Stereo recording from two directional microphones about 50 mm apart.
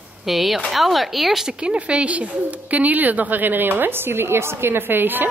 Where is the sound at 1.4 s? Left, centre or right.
Right.